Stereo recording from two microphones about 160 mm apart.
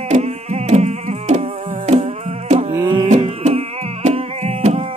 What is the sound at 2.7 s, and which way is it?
Music, 25° right (ahead or behind).